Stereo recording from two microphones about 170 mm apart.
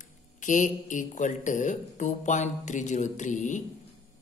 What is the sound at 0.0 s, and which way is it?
A man's voice, 50° left (ahead or behind).